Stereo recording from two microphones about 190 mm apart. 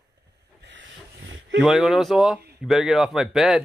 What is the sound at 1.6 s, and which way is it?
Speech, centre (ahead or behind).